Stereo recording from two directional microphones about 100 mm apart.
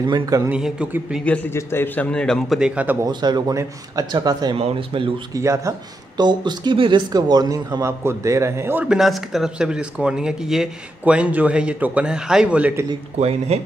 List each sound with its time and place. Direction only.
0.5 s speech: 10° right (ahead or behind)
1.2 s a man's voice: 15° left (ahead or behind)
1.5 s a man's voice: 25° left (ahead or behind)
2.0 s a man's voice: 10° left (ahead or behind)
2.6 s speech: 15° right (ahead or behind)
3.1 s speech: 45° right (ahead or behind)
4.6 s speech: 75° right (ahead or behind)
5.3 s speech: 30° right (ahead or behind)
6.1 s speech: 50° right (ahead or behind); by 8.8 s 25° right (ahead or behind)
8.8 s speech: 5° right (ahead or behind)